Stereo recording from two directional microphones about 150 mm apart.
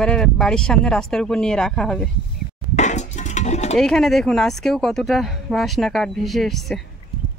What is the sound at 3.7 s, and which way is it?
Speech, centre (ahead or behind).